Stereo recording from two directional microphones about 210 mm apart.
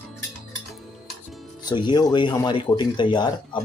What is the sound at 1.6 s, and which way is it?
Speech, 20° left (ahead or behind).